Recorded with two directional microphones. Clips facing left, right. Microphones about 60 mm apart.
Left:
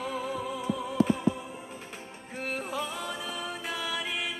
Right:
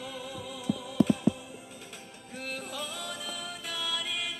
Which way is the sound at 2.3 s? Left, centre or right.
Left.